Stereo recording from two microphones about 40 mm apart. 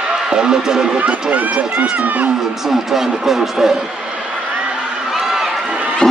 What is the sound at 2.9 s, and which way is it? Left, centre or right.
Speech, centre.